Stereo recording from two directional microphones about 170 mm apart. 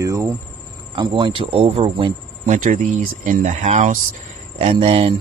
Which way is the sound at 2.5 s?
50° right (ahead or behind).